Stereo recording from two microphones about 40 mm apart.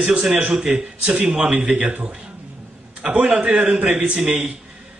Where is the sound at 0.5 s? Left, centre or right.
Centre.